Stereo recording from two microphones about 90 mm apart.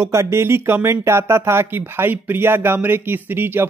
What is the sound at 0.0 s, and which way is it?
Speech, 30° right (ahead or behind).